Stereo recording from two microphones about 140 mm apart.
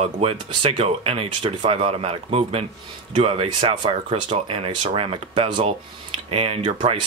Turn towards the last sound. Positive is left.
turn(degrees=-40)  # may be behind; listen again after turning